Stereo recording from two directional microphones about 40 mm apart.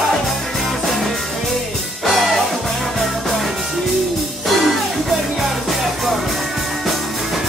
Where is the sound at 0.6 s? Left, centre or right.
Centre.